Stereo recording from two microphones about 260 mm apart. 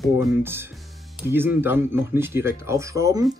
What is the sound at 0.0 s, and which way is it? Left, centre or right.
Speech, centre.